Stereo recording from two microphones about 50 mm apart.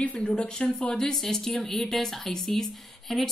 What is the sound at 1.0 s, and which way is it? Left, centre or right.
Speech, centre.